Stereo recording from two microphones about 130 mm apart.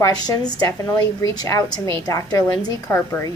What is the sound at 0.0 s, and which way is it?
A woman's voice, 30° left (ahead or behind).